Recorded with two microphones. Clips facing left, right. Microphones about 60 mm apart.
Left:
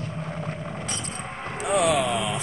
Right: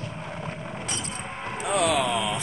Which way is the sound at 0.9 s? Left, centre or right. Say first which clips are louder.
Even; left.